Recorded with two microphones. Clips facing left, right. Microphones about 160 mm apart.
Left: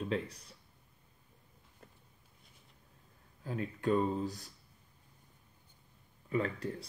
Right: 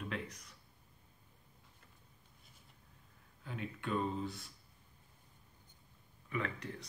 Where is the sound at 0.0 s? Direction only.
30° left (ahead or behind).